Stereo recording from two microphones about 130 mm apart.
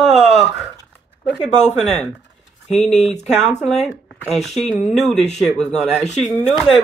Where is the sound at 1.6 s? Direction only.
60° left (ahead or behind).